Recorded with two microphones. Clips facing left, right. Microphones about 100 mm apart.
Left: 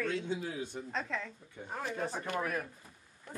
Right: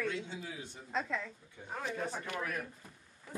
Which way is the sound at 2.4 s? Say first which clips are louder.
Left 5 dB; 30° left (ahead or behind).